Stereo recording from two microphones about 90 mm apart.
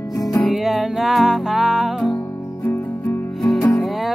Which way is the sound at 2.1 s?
30° left (ahead or behind).